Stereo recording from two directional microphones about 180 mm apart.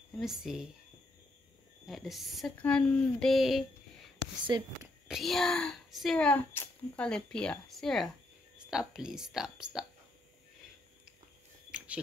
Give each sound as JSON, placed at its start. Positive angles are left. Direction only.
{"t": 0.2, "sound": "a child's voice", "side_deg": 0}
{"t": 1.9, "sound": "a child's voice", "side_deg": 0}
{"t": 4.5, "sound": "speech", "side_deg": -25}
{"t": 5.0, "sound": "a child's voice", "side_deg": 0}